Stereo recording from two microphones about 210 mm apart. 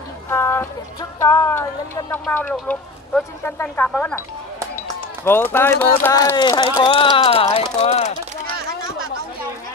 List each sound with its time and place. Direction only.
0.3 s a sound: 10° left (ahead or behind)
1.2 s speech: 15° left (ahead or behind)
5.2 s speech: 10° left (ahead or behind); by 8.5 s 30° left (ahead or behind)